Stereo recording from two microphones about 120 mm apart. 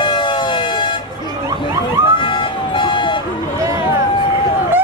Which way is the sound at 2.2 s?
45° left (ahead or behind).